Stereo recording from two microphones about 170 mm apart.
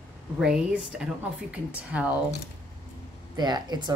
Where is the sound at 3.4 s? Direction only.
25° right (ahead or behind).